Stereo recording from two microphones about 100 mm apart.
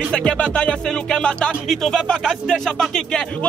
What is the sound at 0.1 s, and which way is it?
Music, 10° left (ahead or behind).